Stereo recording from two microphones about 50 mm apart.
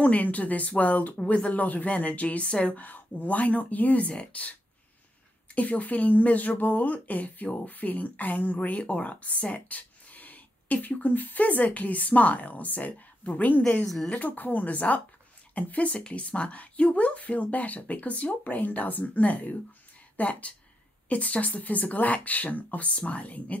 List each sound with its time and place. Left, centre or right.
0.0 s speech: left
13.8 s speech: centre
14.1 s speech: left